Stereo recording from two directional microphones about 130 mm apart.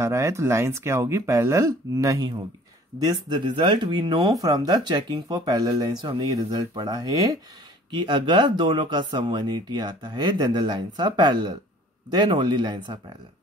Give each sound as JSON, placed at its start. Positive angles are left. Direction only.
{"t": 0.0, "sound": "speech", "side_deg": -20}